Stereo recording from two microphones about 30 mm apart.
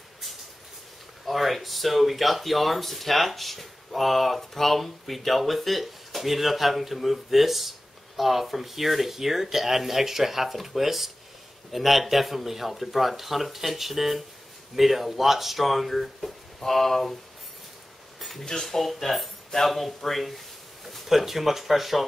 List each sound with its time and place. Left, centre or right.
1.2 s speech: centre
16.6 s speech: centre
18.4 s speech: left
18.7 s speech: centre